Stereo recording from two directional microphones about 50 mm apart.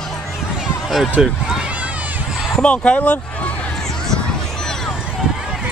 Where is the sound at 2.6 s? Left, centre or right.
Left.